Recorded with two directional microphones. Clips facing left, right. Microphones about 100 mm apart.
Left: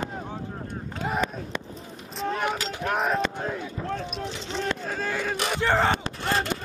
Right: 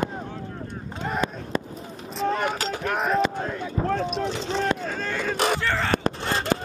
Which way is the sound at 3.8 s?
50° right (ahead or behind).